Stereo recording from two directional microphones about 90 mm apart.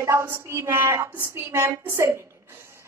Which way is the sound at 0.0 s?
30° right (ahead or behind).